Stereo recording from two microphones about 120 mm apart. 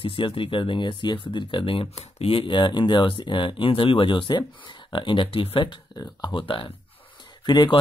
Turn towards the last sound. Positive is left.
turn(degrees=35)  # may be behind; listen again after turning